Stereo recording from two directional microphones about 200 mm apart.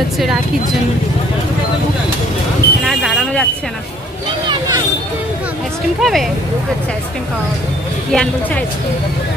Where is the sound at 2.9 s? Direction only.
Centre (ahead or behind).